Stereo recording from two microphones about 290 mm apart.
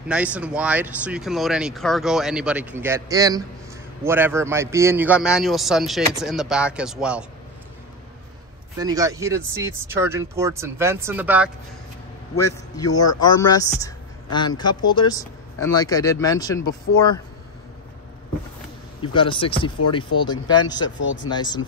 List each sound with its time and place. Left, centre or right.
0.1 s speech: centre
8.7 s speech: centre
12.7 s speech: centre
13.7 s a sound: centre
14.9 s speech: centre
18.9 s speech: centre
21.0 s speech: left
21.3 s speech: centre